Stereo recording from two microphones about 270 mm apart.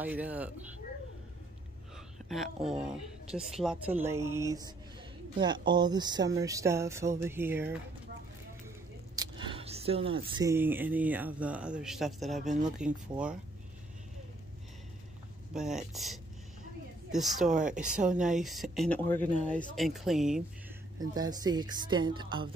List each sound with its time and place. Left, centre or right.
0.0 s speech: centre
2.2 s speech: centre
9.1 s speech: centre
12.4 s speech: right
13.1 s speech: centre
15.5 s speech: centre
21.0 s speech: centre